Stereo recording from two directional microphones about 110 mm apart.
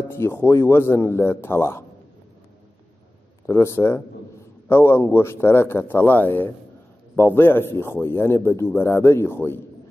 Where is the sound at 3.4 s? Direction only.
25° left (ahead or behind).